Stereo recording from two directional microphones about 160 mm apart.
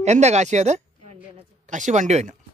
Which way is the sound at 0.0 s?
45° right (ahead or behind).